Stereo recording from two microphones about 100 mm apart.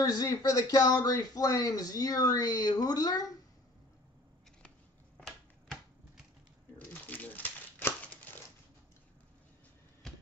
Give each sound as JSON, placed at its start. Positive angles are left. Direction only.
{"t": 0.0, "sound": "speech", "side_deg": 40}
{"t": 5.2, "sound": "typewriter", "side_deg": -5}
{"t": 6.9, "sound": "crumpling", "side_deg": 15}